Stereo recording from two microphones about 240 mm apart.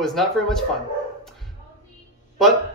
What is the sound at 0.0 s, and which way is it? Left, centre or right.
Speech, centre.